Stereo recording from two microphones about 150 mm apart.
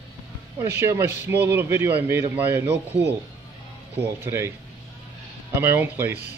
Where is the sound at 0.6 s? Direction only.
15° right (ahead or behind).